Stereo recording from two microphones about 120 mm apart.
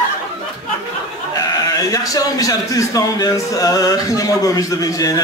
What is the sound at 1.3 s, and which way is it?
A man's voice, 30° left (ahead or behind).